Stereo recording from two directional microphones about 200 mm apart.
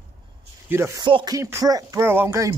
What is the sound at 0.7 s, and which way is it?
Speech, 15° right (ahead or behind).